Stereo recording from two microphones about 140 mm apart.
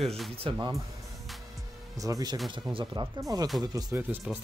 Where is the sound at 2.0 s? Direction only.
25° right (ahead or behind).